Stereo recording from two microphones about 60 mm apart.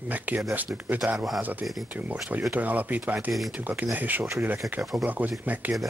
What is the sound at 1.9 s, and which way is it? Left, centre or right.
Speech, right.